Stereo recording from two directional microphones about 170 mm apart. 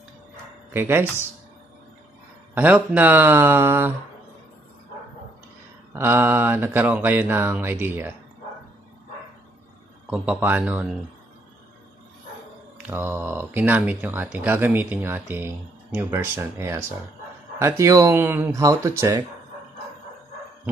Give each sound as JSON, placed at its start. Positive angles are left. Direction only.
{"t": 0.7, "sound": "speech", "side_deg": -15}
{"t": 2.5, "sound": "speech", "side_deg": -10}
{"t": 5.9, "sound": "speech", "side_deg": -15}
{"t": 10.0, "sound": "speech", "side_deg": -5}
{"t": 12.7, "sound": "speech", "side_deg": -10}